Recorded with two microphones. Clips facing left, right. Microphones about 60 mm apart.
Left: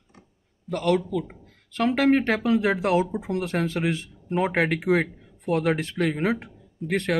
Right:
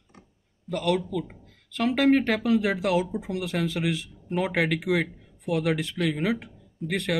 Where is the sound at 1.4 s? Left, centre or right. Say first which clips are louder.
Left 2 dB; left.